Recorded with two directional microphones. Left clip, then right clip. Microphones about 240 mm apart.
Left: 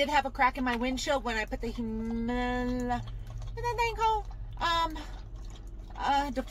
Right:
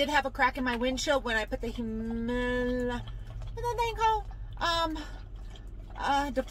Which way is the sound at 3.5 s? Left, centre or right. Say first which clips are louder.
Even; centre.